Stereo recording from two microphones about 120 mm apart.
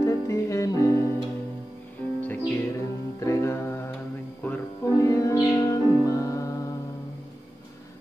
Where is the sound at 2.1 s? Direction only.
15° left (ahead or behind).